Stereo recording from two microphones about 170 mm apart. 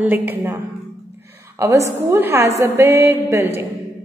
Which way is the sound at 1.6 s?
15° right (ahead or behind).